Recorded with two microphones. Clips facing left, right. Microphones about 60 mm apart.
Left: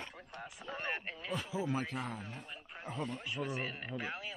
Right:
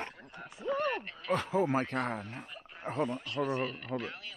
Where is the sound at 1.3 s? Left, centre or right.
Right.